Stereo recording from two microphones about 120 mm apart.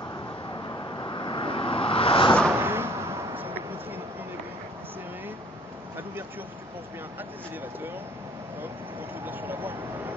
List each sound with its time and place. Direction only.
0.7 s a sound: 35° left (ahead or behind)
2.5 s arrow: 20° right (ahead or behind)
9.2 s speech: 15° right (ahead or behind)